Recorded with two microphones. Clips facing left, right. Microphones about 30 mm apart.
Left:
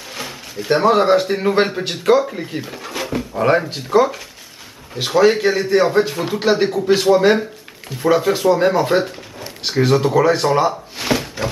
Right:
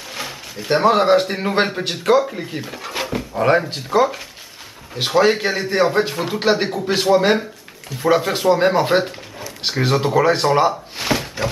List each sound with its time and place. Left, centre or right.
0.1 s a man's voice: centre
8.3 s a man's voice: centre
11.0 s a sound: centre